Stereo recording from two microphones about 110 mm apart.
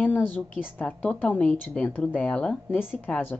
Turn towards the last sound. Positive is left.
turn(degrees=15)  # may be behind; listen again after turning